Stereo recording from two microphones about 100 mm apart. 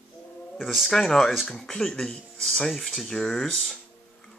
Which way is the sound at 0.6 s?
Centre (ahead or behind).